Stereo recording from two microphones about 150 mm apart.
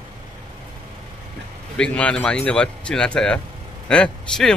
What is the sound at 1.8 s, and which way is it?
A man's voice, 5° left (ahead or behind).